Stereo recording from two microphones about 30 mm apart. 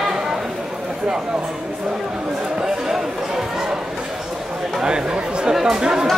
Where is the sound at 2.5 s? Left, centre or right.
Centre.